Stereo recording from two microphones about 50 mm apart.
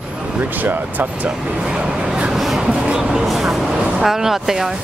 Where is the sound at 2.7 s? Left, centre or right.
Right.